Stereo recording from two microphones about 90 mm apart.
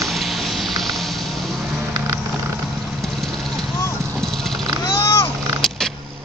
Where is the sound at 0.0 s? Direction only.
Centre (ahead or behind).